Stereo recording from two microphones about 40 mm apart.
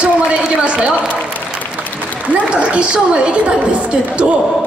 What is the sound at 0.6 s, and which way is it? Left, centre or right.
Speech, right.